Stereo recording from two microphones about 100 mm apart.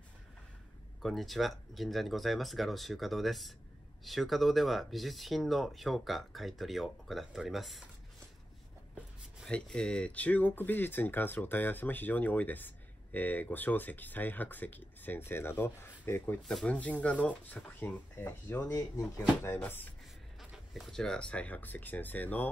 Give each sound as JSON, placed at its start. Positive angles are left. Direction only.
{"t": 1.0, "sound": "speech", "side_deg": 0}
{"t": 9.4, "sound": "speech", "side_deg": 10}
{"t": 16.4, "sound": "speech", "side_deg": 5}
{"t": 18.7, "sound": "speech", "side_deg": 30}
{"t": 20.3, "sound": "speech", "side_deg": 0}